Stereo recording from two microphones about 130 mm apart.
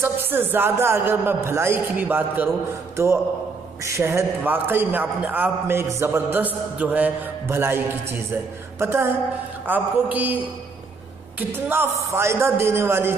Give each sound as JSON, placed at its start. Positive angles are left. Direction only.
{"t": 0.0, "sound": "a man's voice", "side_deg": -15}
{"t": 3.8, "sound": "a man's voice", "side_deg": -20}